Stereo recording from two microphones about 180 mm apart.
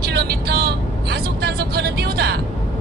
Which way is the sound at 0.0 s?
60° right (ahead or behind).